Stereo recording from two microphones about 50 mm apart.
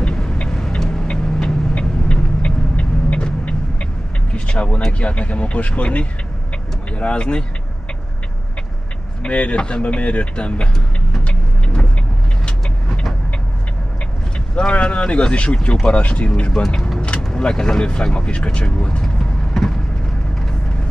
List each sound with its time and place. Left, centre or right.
0.0 s vehicle: centre
1.8 s vehicle: left
4.9 s speech: left
9.2 s speech: left
11.2 s vehicle: centre
14.5 s speech: left